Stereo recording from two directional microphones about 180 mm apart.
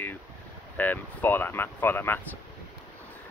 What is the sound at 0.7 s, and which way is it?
Speech, 10° left (ahead or behind).